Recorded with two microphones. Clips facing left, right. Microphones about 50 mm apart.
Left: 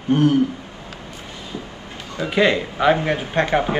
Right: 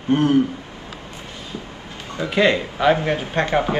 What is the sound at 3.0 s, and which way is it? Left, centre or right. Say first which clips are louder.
Speech: left 1 dB; centre.